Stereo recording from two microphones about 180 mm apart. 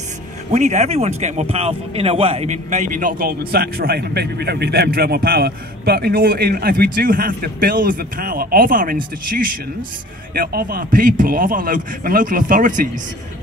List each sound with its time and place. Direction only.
0.5 s a man's voice: 40° right (ahead or behind)